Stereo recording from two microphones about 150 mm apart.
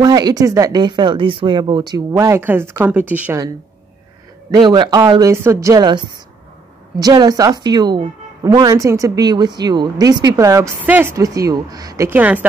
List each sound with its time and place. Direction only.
0.0 s a woman's voice: 25° right (ahead or behind)
4.6 s a woman's voice: 30° right (ahead or behind); by 12.4 s 10° right (ahead or behind)